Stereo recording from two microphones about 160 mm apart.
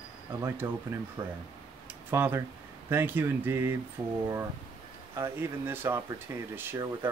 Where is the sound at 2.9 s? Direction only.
15° right (ahead or behind).